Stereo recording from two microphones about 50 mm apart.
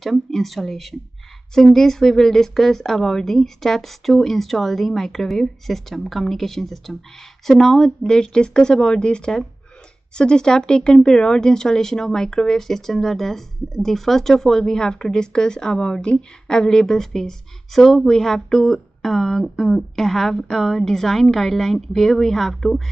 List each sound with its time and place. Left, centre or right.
0.0 s a woman's voice: centre